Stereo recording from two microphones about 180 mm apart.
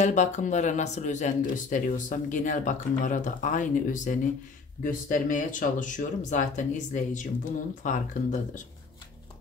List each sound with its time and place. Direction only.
0.0 s speech: 40° left (ahead or behind)